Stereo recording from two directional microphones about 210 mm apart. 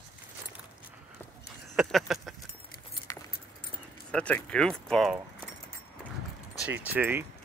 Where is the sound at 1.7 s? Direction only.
Centre (ahead or behind).